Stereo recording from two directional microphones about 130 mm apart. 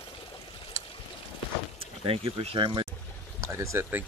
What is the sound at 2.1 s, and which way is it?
Speech, 45° right (ahead or behind).